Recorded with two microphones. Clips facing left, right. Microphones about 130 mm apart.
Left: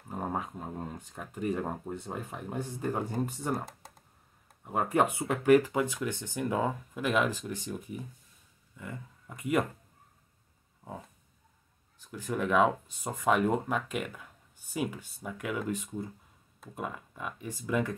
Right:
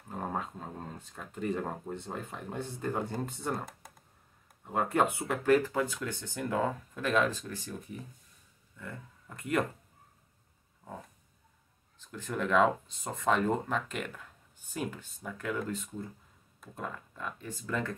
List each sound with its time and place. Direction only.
0.1 s speech: 10° left (ahead or behind)
4.6 s speech: 10° left (ahead or behind)
12.0 s speech: 10° left (ahead or behind)